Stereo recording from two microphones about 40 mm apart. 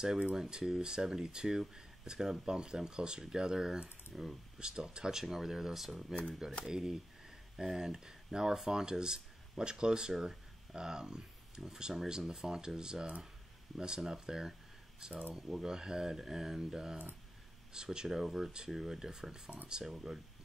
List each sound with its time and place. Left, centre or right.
0.4 s speech: centre
4.1 s speech: centre
4.6 s speech: right